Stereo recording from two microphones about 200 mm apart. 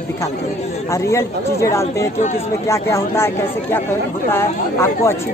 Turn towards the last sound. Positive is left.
turn(degrees=15)  # may be behind; listen again after turning